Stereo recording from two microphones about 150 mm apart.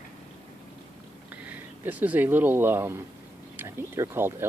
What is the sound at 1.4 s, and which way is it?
Speech, 10° right (ahead or behind).